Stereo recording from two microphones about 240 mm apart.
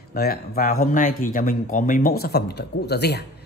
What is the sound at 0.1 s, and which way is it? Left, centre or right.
A man's voice, left.